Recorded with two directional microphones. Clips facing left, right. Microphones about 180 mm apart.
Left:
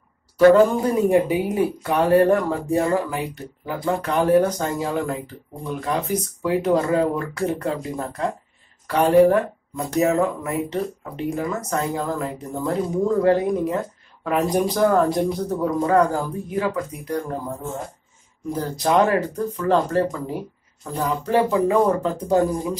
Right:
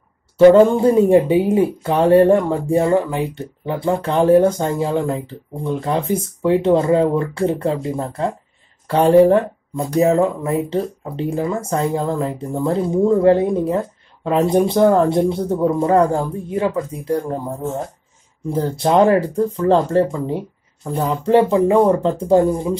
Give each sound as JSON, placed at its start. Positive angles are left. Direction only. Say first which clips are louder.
{"t": 0.4, "sound": "speech", "louder": "right 4 dB", "side_deg": -25}
{"t": 18.5, "sound": "speech", "louder": "right 4 dB", "side_deg": -25}